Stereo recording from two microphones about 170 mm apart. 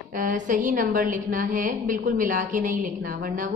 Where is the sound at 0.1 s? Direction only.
55° right (ahead or behind).